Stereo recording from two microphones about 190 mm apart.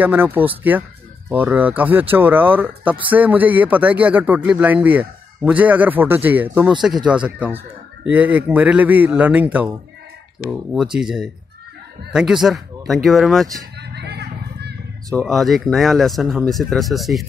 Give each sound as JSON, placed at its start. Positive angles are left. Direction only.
{"t": 0.0, "sound": "speech", "side_deg": -10}
{"t": 13.7, "sound": "a sound", "side_deg": -60}
{"t": 15.2, "sound": "speech", "side_deg": 0}